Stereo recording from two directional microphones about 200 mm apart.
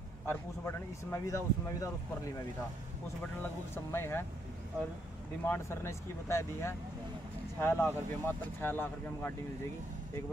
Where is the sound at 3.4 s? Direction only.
10° left (ahead or behind).